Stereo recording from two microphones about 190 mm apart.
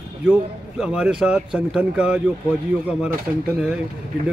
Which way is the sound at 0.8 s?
5° right (ahead or behind).